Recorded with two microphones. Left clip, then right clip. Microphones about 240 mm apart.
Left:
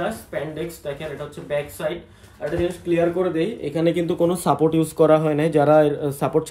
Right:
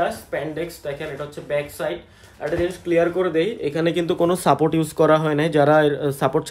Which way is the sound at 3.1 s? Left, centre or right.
Right.